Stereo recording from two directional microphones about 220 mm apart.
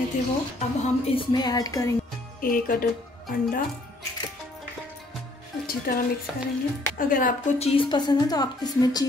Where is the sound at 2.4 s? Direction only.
40° left (ahead or behind).